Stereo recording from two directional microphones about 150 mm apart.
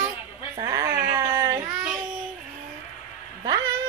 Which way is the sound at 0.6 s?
20° right (ahead or behind).